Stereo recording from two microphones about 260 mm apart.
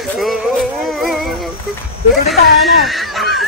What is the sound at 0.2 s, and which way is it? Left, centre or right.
Music, centre.